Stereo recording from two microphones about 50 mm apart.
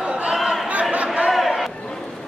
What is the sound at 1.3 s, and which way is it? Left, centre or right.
Crowd, centre.